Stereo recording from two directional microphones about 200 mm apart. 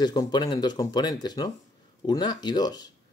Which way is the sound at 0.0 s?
20° left (ahead or behind).